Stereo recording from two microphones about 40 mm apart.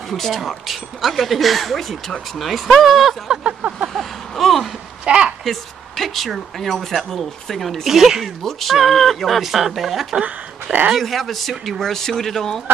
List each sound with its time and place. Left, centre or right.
0.1 s speech: centre
0.4 s speech: centre
3.9 s a sound: centre
5.0 s a sound: right
5.4 s speech: centre
7.8 s speech: centre
8.5 s speech: centre
10.2 s speech: right
11.0 s speech: centre